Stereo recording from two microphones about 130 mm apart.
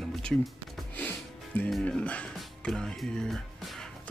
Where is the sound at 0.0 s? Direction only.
5° left (ahead or behind).